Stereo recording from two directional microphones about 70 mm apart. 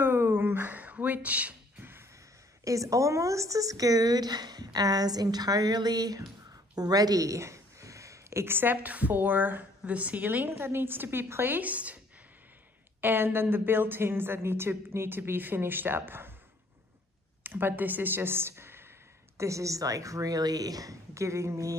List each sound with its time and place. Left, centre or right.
0.0 s a sound: right
2.6 s a woman's voice: right
13.0 s a woman's voice: right
17.4 s speech: right
19.3 s speech: right